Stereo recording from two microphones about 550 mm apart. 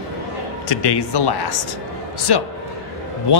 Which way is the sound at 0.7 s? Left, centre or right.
Left.